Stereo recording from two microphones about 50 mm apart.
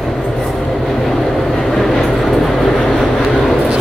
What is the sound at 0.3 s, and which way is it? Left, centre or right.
Train, centre.